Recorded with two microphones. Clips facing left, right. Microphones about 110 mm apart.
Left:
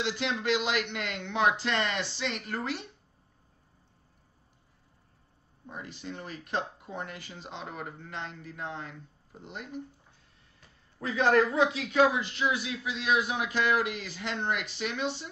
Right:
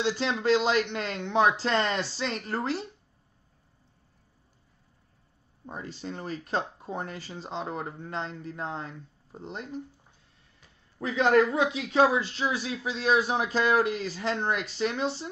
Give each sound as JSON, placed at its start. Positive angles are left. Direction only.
{"t": 0.0, "sound": "speech", "side_deg": -35}
{"t": 5.7, "sound": "speech", "side_deg": -35}
{"t": 11.0, "sound": "a man's voice", "side_deg": -20}